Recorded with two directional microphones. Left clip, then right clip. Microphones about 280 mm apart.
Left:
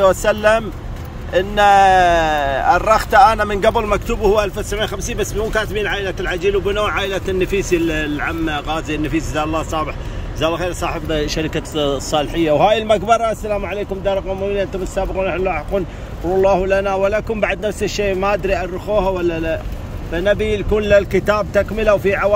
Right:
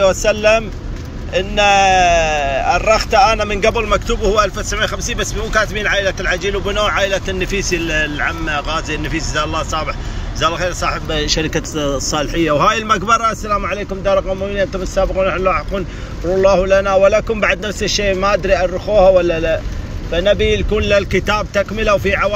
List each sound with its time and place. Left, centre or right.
0.0 s a man's voice: left